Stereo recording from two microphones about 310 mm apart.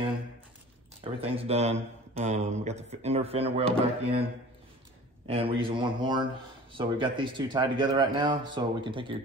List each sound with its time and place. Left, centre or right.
1.3 s speech: centre